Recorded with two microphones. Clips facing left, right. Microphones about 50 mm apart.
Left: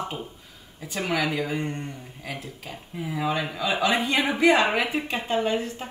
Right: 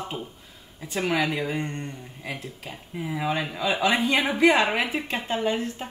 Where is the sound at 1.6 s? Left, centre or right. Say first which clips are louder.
Left 1 dB; centre.